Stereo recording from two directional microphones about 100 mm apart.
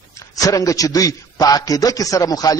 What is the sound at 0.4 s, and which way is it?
A man's voice, 35° left (ahead or behind).